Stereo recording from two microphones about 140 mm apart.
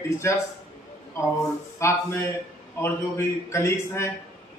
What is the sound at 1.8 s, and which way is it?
A man's voice, 15° left (ahead or behind).